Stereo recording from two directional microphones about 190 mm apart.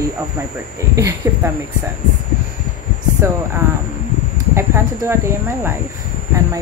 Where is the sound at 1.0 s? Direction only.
15° right (ahead or behind).